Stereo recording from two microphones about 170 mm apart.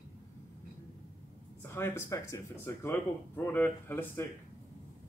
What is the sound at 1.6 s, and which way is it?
Speech, 15° left (ahead or behind).